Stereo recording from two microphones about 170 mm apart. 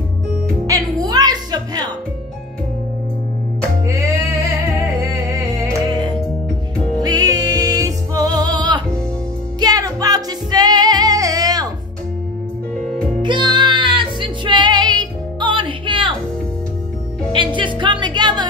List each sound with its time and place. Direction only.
0.7 s music: 20° right (ahead or behind)
5.3 s music: 15° right (ahead or behind)
7.0 s music: 25° right (ahead or behind)
13.2 s music: 25° right (ahead or behind)
17.3 s music: 30° right (ahead or behind)